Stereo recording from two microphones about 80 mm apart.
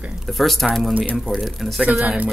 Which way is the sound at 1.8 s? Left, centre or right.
Centre.